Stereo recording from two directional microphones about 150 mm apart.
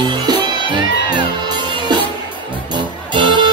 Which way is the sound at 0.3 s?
30° right (ahead or behind).